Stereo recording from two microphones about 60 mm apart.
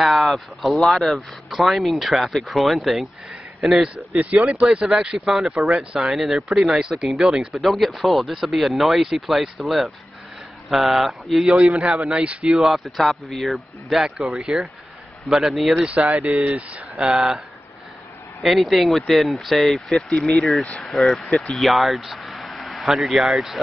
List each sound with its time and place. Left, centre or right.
0.0 s speech: centre
4.4 s speech: centre
12.4 s speech: centre
16.3 s speech: right
18.4 s speech: centre